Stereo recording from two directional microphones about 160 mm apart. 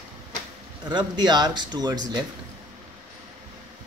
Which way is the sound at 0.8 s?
25° right (ahead or behind).